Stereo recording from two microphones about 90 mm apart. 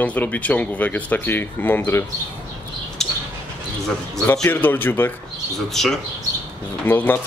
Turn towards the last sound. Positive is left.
turn(degrees=25)  # may be behind; listen again after turning